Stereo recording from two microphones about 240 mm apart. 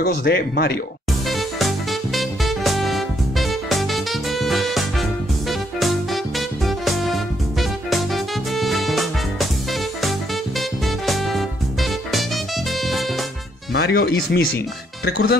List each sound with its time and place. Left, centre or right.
0.0 s speech: left
2.1 s music: centre
6.6 s music: centre
13.7 s speech: left